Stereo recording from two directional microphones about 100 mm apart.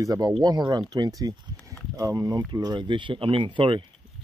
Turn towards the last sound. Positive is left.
turn(degrees=-50)  # may be behind; listen again after turning